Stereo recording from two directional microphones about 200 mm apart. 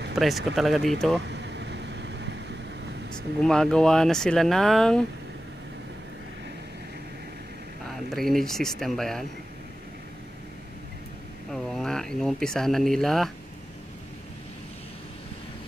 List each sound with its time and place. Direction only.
0.1 s speech: centre (ahead or behind)
1.3 s vehicle: 60° right (ahead or behind)
3.4 s speech: 5° left (ahead or behind)
8.1 s speech: centre (ahead or behind)
11.5 s speech: centre (ahead or behind)